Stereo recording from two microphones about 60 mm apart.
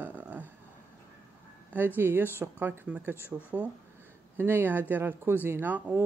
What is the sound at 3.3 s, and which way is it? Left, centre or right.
Speech, right.